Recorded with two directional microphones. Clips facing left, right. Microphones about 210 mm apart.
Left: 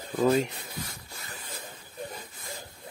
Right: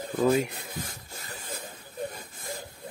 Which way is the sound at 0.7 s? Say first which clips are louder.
Right 2 dB; 50° right (ahead or behind).